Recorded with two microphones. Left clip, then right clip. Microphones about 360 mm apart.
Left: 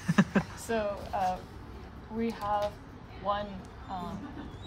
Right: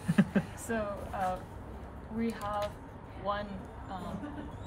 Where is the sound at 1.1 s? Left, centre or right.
Centre.